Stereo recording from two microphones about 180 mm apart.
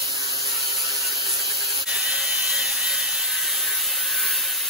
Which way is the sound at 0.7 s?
Centre (ahead or behind).